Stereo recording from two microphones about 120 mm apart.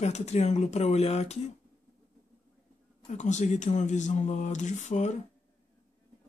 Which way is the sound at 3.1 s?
80° left.